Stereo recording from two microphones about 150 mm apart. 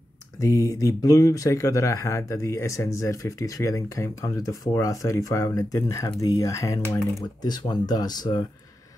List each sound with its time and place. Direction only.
0.4 s speech: 20° left (ahead or behind)